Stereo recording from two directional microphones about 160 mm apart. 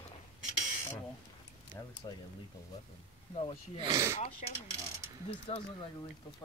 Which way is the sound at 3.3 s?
35° left (ahead or behind).